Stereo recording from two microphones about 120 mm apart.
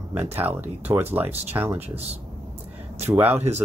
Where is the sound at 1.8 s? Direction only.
60° right (ahead or behind).